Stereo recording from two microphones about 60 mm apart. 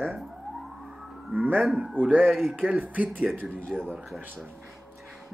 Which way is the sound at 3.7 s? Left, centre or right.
Centre.